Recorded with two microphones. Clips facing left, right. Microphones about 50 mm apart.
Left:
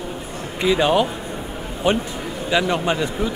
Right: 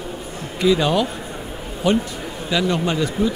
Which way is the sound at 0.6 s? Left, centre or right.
Left.